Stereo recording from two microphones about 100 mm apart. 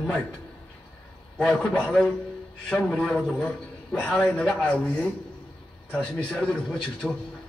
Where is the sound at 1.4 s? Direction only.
5° left (ahead or behind).